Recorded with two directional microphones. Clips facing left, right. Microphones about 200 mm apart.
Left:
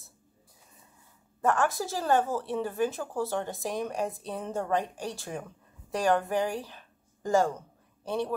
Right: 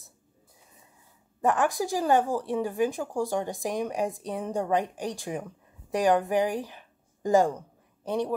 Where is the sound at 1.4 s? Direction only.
15° right (ahead or behind).